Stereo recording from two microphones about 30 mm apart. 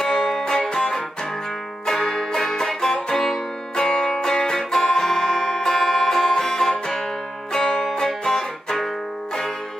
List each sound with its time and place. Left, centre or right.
0.0 s music: centre
0.6 s music: left
1.9 s music: centre
7.9 s music: left